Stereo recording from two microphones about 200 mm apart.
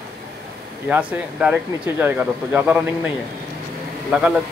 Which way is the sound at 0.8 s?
5° right (ahead or behind).